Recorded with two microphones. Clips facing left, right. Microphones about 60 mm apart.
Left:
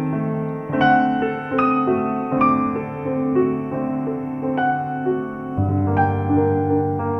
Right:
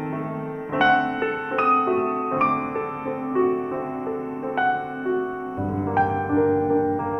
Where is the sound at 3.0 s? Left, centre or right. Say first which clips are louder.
Left 4 dB; centre.